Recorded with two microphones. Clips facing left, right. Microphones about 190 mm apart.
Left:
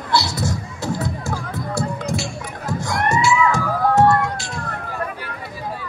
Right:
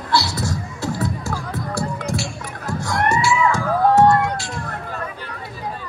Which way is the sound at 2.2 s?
20° left (ahead or behind).